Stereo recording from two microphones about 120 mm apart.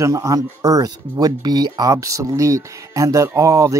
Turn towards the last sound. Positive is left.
turn(degrees=-30)  # may be behind; listen again after turning